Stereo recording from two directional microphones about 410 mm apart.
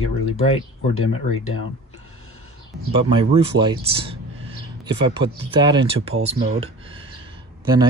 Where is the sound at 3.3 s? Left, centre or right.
Centre.